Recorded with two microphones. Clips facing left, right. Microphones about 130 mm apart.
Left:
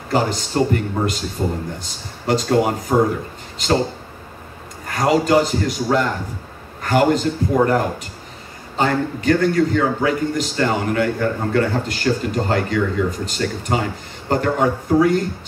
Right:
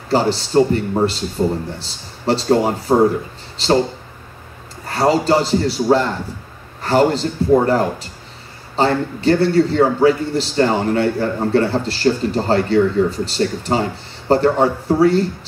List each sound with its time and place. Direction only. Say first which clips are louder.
0.1 s a man's voice: right 4 dB; 30° right (ahead or behind)
4.8 s a man's voice: right 2 dB; 30° right (ahead or behind)